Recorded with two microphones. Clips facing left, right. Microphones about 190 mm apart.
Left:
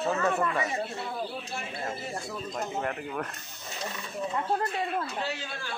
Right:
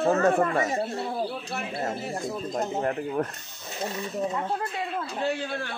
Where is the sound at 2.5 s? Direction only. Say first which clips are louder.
Right 4 dB; 35° right (ahead or behind).